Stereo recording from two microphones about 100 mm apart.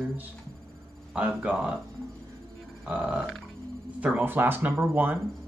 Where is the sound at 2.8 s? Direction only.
10° right (ahead or behind).